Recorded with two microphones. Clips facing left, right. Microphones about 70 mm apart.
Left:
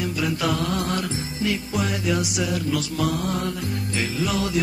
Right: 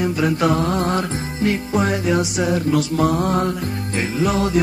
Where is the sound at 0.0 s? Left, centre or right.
Right.